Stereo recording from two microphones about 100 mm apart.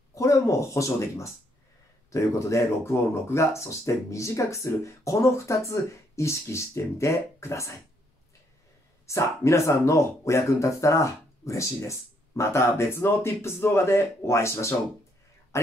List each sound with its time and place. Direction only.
0.1 s speech: 30° left (ahead or behind)
9.0 s a man's voice: 30° left (ahead or behind)